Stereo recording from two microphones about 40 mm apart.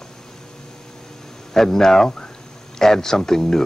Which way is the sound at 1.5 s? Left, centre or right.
Centre.